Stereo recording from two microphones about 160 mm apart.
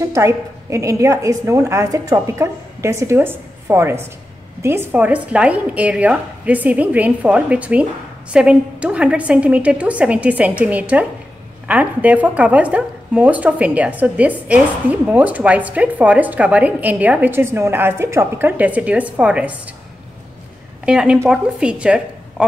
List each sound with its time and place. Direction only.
0.1 s a woman's voice: 20° right (ahead or behind)
20.8 s a woman's voice: 5° right (ahead or behind)